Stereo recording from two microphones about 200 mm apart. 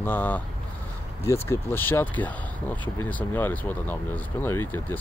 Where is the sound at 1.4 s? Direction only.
10° left (ahead or behind).